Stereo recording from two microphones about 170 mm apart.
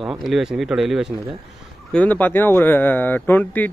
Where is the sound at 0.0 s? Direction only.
Centre (ahead or behind).